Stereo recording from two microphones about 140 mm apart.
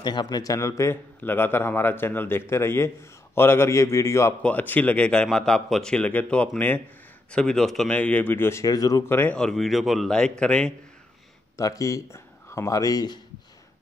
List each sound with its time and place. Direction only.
0.0 s a man's voice: 30° left (ahead or behind)
4.4 s speech: 10° left (ahead or behind)
11.5 s speech: 25° left (ahead or behind)